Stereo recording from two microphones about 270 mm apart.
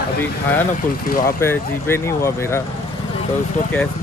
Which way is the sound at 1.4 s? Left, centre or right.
Centre.